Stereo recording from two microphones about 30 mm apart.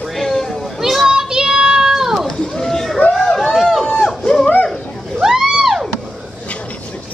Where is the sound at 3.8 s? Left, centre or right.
Centre.